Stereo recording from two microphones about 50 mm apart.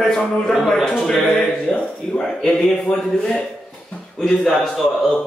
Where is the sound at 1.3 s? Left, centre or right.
Centre.